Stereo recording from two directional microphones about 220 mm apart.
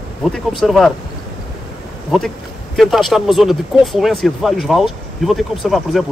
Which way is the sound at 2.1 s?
Centre (ahead or behind).